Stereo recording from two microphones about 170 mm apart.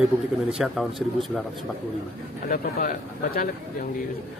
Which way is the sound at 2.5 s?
55° left (ahead or behind).